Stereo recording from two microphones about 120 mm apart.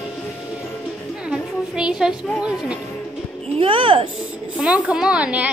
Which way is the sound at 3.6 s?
45° right (ahead or behind).